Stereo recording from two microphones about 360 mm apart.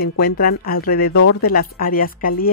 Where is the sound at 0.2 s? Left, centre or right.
Left.